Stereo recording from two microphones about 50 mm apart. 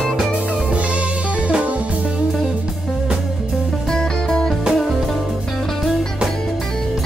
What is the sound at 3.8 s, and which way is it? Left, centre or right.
Music, centre.